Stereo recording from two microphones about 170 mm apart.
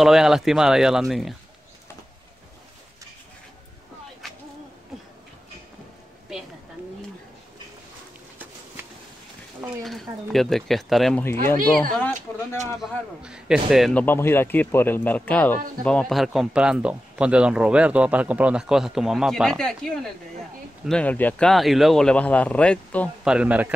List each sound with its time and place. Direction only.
0.0 s speech: 5° right (ahead or behind)
9.6 s speech: centre (ahead or behind)
12.3 s speech: 15° left (ahead or behind)
13.2 s speech: 5° right (ahead or behind)
14.0 s speech: 15° left (ahead or behind)
23.2 s speech: 5° right (ahead or behind)